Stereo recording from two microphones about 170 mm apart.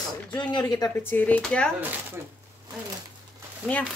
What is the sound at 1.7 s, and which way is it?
Speech, 10° right (ahead or behind).